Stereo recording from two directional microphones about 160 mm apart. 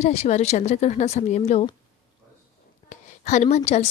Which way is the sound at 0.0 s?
45° left (ahead or behind).